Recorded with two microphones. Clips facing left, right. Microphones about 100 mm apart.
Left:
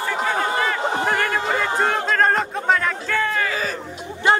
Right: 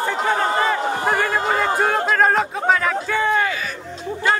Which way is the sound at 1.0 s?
15° right (ahead or behind).